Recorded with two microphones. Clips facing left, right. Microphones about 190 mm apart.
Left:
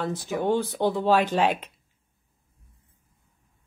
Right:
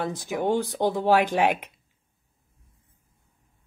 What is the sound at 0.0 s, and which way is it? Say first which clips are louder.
Speech: even; 15° right (ahead or behind).